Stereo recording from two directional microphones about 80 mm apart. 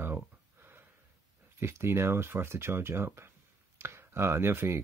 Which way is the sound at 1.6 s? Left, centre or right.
Right.